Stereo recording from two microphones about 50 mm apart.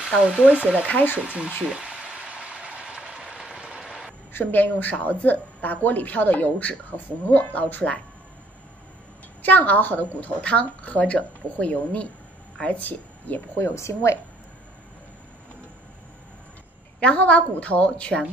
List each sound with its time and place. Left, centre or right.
0.0 s speech: centre
1.2 s speech: right
1.6 s boiling: centre
3.3 s a sound: centre
4.3 s speech: left
9.4 s speech: left
13.6 s speech: left
17.0 s a woman's voice: left